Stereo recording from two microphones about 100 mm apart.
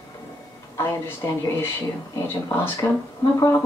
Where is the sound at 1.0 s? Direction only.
25° left (ahead or behind).